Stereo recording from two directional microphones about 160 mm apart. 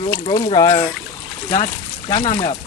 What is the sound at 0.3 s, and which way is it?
Speech, 25° left (ahead or behind).